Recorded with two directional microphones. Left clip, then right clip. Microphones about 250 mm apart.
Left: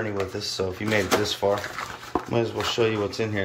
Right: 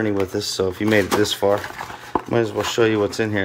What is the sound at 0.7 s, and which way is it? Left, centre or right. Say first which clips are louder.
Speech: right 5 dB; right.